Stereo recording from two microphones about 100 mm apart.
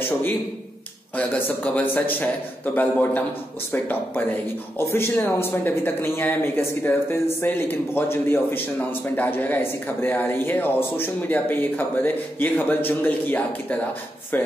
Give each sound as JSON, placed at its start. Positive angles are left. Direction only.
{"t": 1.1, "sound": "a man's voice", "side_deg": 15}